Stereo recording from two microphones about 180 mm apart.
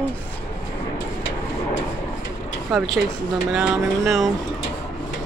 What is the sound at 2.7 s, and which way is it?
Speech, centre (ahead or behind).